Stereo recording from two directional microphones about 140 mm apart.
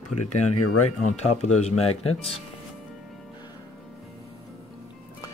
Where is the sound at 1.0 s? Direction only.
50° left (ahead or behind).